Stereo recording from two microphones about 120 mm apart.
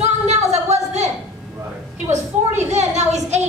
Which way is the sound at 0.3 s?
65° right (ahead or behind).